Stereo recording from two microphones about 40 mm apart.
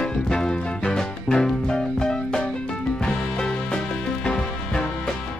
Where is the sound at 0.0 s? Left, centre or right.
Centre.